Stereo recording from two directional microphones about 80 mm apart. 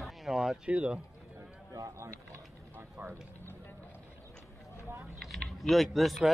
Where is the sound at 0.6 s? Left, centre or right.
Centre.